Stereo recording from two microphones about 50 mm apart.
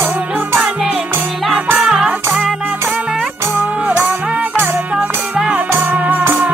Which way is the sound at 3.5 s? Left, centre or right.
Right.